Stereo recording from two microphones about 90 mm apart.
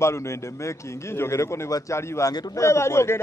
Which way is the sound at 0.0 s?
30° left (ahead or behind).